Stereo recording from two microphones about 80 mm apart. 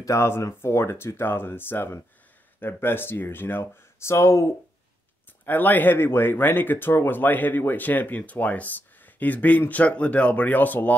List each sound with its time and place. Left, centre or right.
0.0 s speech: left
5.4 s speech: left